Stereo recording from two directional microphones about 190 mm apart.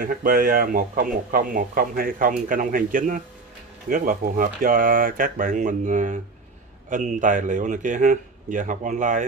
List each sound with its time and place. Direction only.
0.0 s speech: 50° right (ahead or behind)